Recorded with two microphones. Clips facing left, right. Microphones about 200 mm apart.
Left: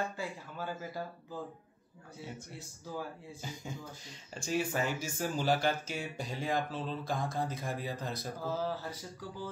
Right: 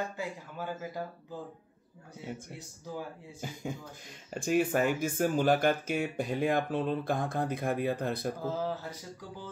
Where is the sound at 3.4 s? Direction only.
55° right (ahead or behind).